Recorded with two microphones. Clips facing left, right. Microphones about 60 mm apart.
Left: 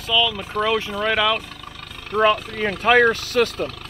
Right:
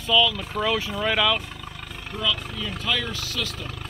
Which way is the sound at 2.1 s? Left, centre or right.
Left.